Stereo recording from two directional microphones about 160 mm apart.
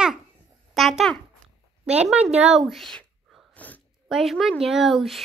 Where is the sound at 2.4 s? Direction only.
5° right (ahead or behind).